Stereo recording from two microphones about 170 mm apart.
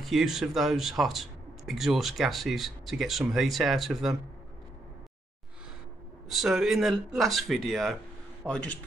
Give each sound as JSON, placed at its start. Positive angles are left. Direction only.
{"t": 0.0, "sound": "speech", "side_deg": 0}
{"t": 6.2, "sound": "speech", "side_deg": 0}